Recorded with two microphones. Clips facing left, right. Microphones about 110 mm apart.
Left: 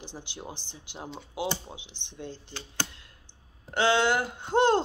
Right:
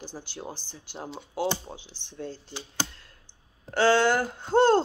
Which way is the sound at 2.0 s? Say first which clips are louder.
Right 3 dB; 40° right (ahead or behind).